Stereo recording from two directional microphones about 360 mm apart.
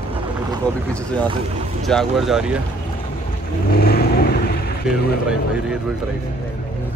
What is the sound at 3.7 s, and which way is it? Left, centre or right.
Vehicle, left.